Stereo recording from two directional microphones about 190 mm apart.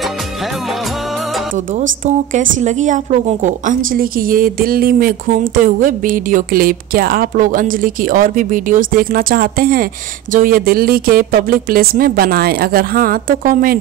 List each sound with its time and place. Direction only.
2.0 s a woman's voice: 40° right (ahead or behind)